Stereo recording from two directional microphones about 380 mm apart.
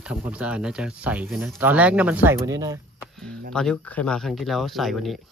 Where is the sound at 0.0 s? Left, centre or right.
Centre.